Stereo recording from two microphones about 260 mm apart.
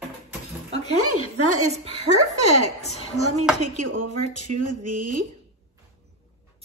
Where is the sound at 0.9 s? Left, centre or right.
Right.